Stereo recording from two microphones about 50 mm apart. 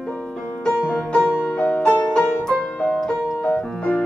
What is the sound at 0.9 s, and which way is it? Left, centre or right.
Music, centre.